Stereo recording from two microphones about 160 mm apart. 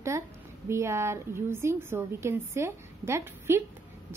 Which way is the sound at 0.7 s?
15° right (ahead or behind).